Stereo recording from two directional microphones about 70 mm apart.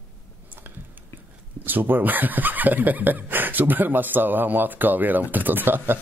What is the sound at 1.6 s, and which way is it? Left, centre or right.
Speech, right.